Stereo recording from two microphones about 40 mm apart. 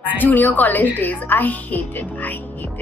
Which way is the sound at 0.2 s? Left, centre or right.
Left.